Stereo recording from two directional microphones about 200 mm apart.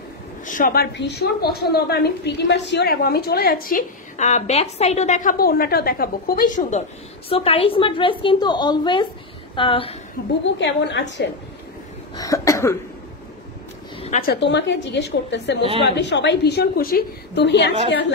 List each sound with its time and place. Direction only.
0.5 s a woman's voice: 40° left (ahead or behind)
0.9 s a woman's voice: 55° left (ahead or behind)
7.2 s a woman's voice: 30° left (ahead or behind)
10.6 s a woman's voice: 60° left (ahead or behind)
12.2 s cough: 15° left (ahead or behind)
13.9 s a sound: 30° left (ahead or behind)
14.2 s a woman's voice: 55° left (ahead or behind)